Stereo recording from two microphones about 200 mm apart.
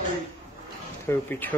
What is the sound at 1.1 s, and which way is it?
Speech, 10° left (ahead or behind).